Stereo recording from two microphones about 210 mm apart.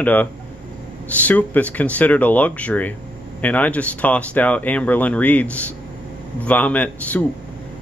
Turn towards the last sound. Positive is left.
turn(degrees=5)  # may be behind; listen again after turning